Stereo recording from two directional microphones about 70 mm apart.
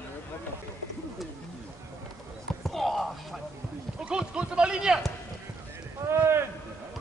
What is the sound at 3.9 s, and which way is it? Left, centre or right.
Speech, centre.